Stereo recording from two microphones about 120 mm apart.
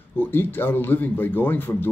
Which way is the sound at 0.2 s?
15° left (ahead or behind).